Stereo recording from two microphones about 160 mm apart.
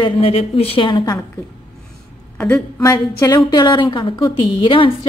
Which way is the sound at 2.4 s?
10° left (ahead or behind).